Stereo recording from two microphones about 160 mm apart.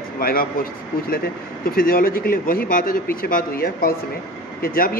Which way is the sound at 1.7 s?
65° left (ahead or behind).